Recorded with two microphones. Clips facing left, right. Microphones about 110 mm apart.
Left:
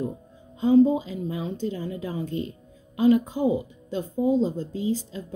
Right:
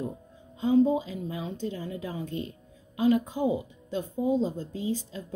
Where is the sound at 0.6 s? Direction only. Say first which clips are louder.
Left 4 dB; 35° left (ahead or behind).